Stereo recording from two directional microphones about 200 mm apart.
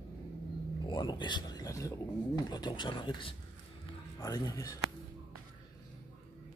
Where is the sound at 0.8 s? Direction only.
20° left (ahead or behind).